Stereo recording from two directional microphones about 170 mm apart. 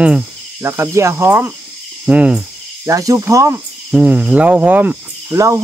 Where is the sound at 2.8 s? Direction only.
20° right (ahead or behind).